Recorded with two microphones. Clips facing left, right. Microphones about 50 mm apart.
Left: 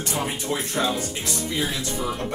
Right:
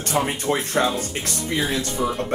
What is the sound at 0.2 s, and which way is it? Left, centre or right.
Speech, right.